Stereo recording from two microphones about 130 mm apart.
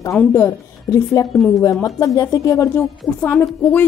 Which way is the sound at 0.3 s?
20° left (ahead or behind).